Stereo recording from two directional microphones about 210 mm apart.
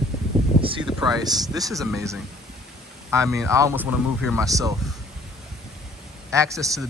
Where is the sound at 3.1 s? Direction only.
15° right (ahead or behind).